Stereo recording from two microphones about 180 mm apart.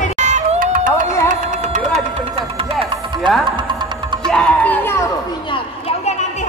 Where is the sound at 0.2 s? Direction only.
40° right (ahead or behind).